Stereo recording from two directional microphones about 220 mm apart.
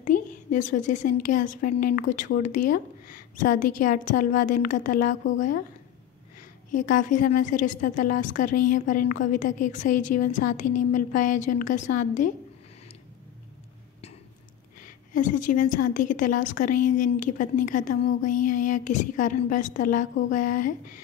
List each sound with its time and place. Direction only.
0.0 s a woman's voice: 35° left (ahead or behind)
6.7 s a woman's voice: 35° left (ahead or behind)
15.1 s a woman's voice: 35° left (ahead or behind)